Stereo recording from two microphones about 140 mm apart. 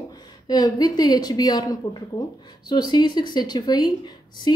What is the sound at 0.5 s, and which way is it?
A woman's voice, 25° left (ahead or behind).